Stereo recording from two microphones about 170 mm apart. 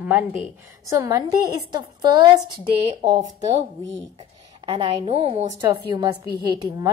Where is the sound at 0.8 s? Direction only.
20° right (ahead or behind).